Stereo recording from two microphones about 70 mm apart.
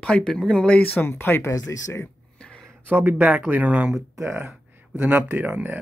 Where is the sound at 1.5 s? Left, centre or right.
Left.